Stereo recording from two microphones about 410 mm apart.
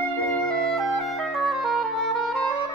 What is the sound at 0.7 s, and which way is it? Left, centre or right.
Clarinet, centre.